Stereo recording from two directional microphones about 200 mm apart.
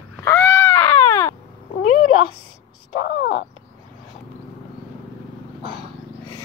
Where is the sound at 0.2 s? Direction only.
10° left (ahead or behind).